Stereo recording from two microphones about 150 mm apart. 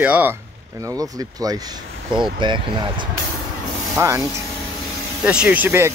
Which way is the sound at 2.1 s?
30° right (ahead or behind).